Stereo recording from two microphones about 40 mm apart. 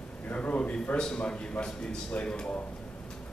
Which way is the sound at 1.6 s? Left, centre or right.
Left.